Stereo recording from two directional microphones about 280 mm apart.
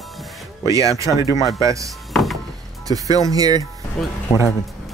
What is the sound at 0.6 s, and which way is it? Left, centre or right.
Speech, centre.